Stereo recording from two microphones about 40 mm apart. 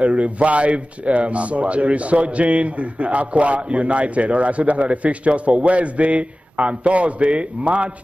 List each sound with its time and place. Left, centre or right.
0.0 s a man's voice: right